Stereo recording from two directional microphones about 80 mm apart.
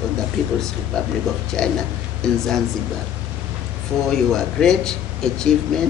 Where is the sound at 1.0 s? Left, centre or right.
Centre.